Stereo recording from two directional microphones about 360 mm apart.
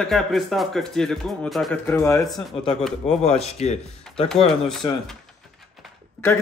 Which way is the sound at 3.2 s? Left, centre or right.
Centre.